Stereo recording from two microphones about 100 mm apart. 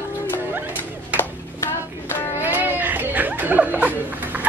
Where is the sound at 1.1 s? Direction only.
25° left (ahead or behind).